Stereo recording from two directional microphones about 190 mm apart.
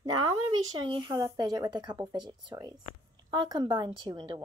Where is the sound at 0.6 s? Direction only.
20° right (ahead or behind).